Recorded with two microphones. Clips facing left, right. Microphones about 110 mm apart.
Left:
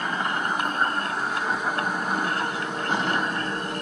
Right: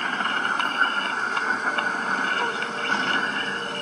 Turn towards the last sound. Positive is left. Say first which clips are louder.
# left 1 dB
turn(degrees=10)  # may be behind; listen again after turning